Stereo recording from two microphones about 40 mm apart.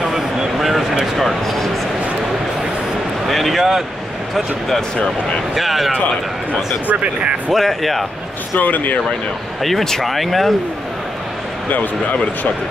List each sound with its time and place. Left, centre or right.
0.0 s vehicle: centre
1.1 s a sound: centre
3.3 s a sound: centre
5.5 s speech: centre
6.9 s speech: right
7.5 s speech: centre
8.5 s speech: left
9.6 s speech: centre
11.7 s speech: left